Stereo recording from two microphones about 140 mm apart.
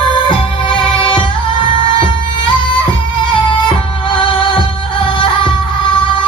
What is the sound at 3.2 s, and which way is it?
Music, 35° left (ahead or behind).